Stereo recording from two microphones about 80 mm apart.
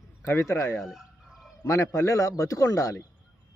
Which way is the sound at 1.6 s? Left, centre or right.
Left.